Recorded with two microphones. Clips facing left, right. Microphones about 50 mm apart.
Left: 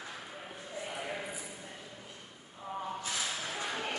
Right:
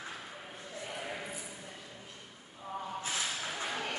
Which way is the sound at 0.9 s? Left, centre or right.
Centre.